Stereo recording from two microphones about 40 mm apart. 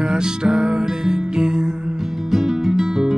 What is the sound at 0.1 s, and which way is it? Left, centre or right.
Music, centre.